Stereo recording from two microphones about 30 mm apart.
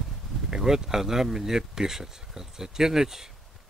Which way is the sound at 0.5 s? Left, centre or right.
Centre.